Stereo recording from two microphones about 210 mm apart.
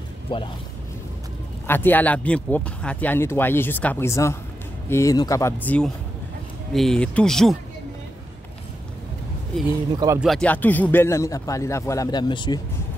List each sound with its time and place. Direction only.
0.3 s speech: 25° left (ahead or behind)
1.7 s speech: 10° left (ahead or behind)
9.9 s speech: 15° right (ahead or behind)
10.2 s speech: 5° left (ahead or behind); by 12.5 s 20° left (ahead or behind)